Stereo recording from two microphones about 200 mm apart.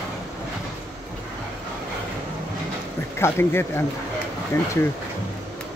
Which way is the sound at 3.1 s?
10° left (ahead or behind).